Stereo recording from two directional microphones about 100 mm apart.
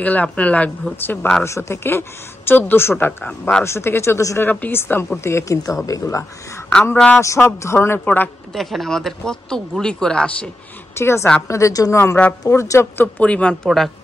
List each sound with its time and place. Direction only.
0.0 s speech: 15° left (ahead or behind)
3.1 s speech: 10° left (ahead or behind)
3.6 s speech: 25° left (ahead or behind)
6.7 s speech: 10° left (ahead or behind)
7.2 s speech: 30° left (ahead or behind)
8.5 s speech: centre (ahead or behind)
11.0 s speech: 25° left (ahead or behind)